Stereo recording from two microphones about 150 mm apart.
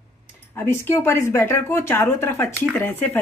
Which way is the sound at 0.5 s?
15° left (ahead or behind).